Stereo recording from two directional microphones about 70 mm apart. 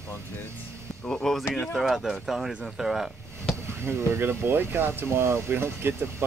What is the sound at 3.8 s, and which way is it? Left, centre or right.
Speech, right.